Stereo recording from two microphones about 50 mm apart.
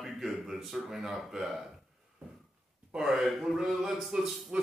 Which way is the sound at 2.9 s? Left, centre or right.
Centre.